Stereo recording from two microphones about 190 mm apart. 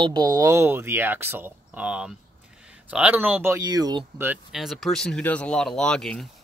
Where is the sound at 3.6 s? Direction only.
20° right (ahead or behind).